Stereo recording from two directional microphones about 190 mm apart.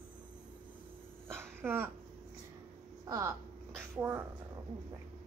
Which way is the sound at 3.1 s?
15° right (ahead or behind).